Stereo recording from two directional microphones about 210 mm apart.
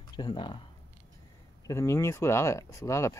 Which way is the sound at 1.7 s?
15° left (ahead or behind).